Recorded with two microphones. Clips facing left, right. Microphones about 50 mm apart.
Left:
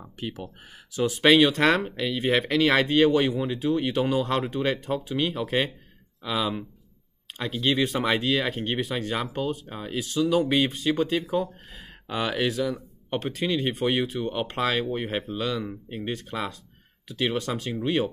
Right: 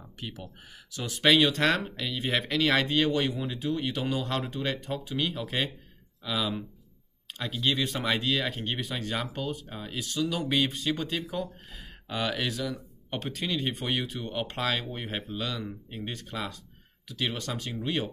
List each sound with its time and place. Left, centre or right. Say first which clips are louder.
0.2 s speech: left 6 dB; centre